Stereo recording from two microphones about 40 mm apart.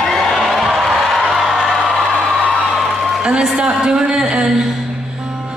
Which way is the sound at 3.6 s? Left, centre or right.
Centre.